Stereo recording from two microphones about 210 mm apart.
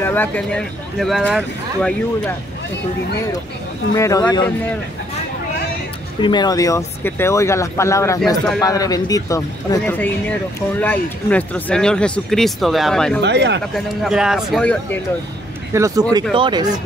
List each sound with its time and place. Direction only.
0.0 s speech: 10° left (ahead or behind)
3.9 s speech: 15° left (ahead or behind)
6.2 s speech: 20° left (ahead or behind); by 13.2 s 5° left (ahead or behind)
13.2 s speech: 55° right (ahead or behind)
13.7 s speech: centre (ahead or behind)
15.7 s speech: 15° right (ahead or behind)